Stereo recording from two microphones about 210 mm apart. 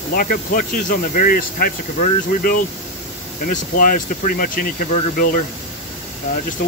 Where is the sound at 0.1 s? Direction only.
40° left (ahead or behind).